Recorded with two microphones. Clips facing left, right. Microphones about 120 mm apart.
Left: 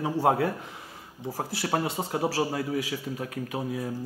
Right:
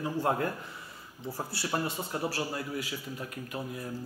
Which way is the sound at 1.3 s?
75° left (ahead or behind).